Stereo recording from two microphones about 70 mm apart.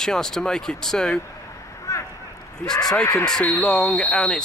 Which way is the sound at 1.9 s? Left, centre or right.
Left.